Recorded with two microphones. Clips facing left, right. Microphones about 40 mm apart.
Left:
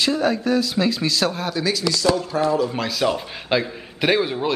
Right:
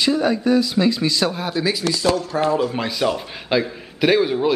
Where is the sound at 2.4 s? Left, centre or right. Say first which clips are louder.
Right 1 dB; right.